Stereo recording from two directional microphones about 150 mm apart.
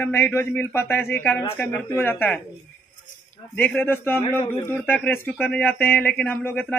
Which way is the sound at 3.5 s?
10° left (ahead or behind).